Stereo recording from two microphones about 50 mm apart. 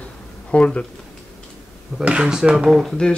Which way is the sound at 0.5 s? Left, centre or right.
Left.